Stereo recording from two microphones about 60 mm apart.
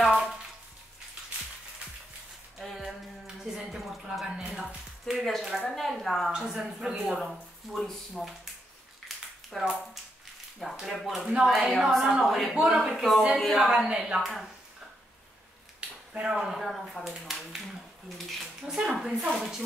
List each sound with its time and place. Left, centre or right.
0.0 s frying: centre
2.6 s a sound: centre
5.0 s speech: centre
6.3 s speech: centre
9.1 s a sound: centre
9.5 s speech: centre
12.5 s speech: centre
16.1 s speech: centre
16.3 s speech: centre